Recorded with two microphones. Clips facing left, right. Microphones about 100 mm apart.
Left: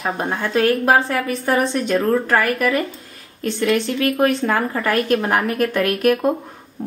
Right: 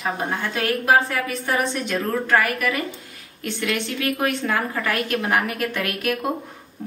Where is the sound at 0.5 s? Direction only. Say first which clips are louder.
Left 4 dB; 35° left (ahead or behind).